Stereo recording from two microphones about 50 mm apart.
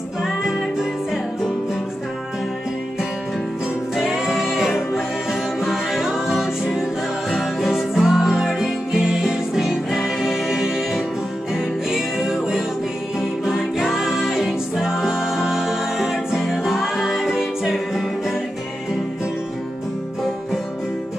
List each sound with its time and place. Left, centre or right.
0.2 s music: centre
3.9 s music: centre